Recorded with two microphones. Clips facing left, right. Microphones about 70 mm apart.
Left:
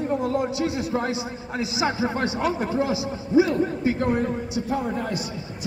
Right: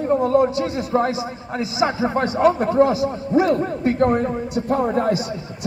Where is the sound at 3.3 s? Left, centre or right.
Centre.